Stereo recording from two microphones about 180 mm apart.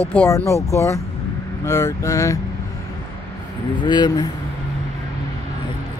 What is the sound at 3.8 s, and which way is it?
Speech, 25° left (ahead or behind).